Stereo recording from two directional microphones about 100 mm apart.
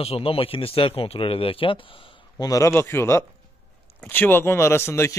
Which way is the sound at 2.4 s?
35° left (ahead or behind).